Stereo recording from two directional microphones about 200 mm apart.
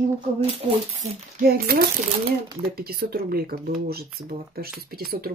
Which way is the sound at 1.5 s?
50° right (ahead or behind).